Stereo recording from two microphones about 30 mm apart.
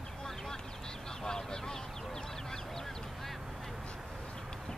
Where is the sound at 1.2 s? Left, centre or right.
Centre.